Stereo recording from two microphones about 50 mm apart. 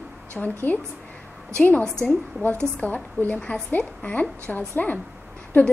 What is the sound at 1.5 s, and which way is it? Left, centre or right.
A woman's voice, left.